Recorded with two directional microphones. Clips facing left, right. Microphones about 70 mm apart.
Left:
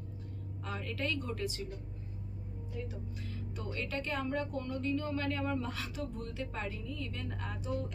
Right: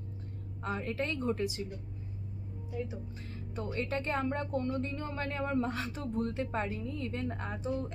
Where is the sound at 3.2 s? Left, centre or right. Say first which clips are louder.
Right 4 dB; right.